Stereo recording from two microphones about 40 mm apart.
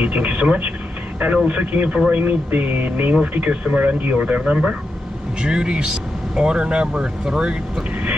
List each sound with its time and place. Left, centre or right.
0.0 s speech: right
5.4 s speech: right